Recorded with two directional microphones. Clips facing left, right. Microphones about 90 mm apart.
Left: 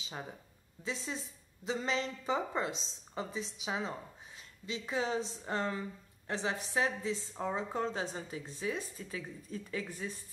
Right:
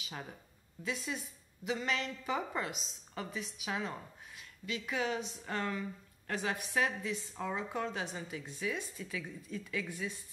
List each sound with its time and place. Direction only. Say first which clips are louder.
0.8 s a woman's voice: right 1 dB; 30° left (ahead or behind)